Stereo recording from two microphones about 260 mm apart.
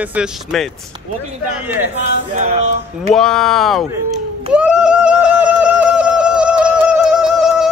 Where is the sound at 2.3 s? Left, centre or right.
Right.